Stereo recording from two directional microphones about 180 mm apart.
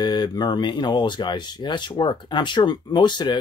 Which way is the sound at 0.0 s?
25° left (ahead or behind).